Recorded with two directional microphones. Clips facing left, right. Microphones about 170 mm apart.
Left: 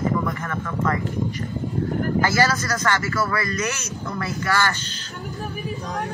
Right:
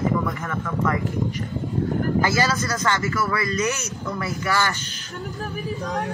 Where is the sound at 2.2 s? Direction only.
15° right (ahead or behind).